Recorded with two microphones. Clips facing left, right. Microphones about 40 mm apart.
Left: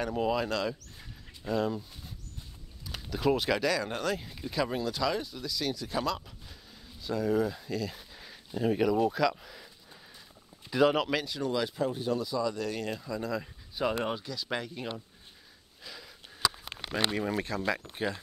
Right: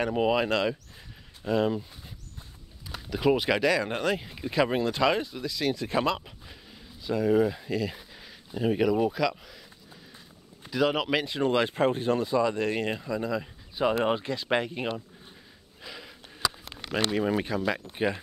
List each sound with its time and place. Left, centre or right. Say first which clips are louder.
0.0 s speech: right 5 dB; right
2.9 s speech: right 4 dB; centre; by 6.3 s right
6.7 s a sound: right 4 dB; centre
7.2 s speech: right 6 dB; right
8.2 s speech: right 1 dB; centre
9.1 s speech: even; centre
10.7 s speech: left 1 dB; centre
11.2 s speech: right 6 dB; right
13.0 s speech: right 4 dB; centre
14.0 s speech: right 7 dB; right
15.8 s gasp: right 4 dB; centre
17.2 s speech: right 5 dB; centre